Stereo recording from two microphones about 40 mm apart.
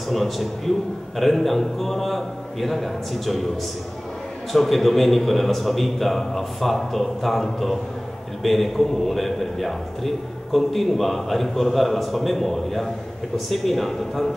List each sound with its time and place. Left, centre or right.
0.1 s a man's voice: centre
4.5 s a man's voice: centre